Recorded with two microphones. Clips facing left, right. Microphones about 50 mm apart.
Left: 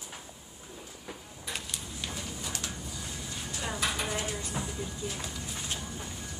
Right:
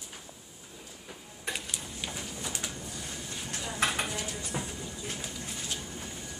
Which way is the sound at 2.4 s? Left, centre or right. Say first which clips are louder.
Right 1 dB; right.